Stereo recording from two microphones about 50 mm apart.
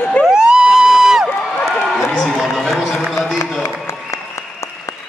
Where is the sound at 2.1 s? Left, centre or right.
Centre.